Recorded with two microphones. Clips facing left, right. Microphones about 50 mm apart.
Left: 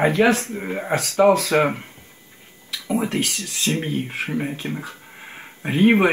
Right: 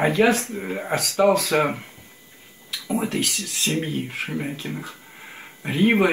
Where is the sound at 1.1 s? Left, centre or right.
Left.